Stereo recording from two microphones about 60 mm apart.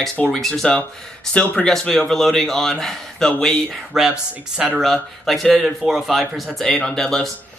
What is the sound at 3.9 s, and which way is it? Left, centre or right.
Speech, centre.